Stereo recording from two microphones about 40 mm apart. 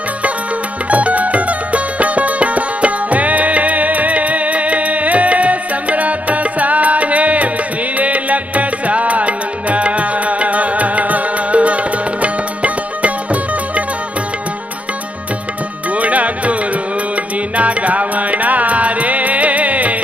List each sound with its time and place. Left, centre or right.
0.8 s music: right
15.9 s music: right
17.6 s music: right